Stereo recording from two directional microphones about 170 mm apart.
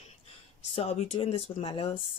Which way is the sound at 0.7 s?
35° left (ahead or behind).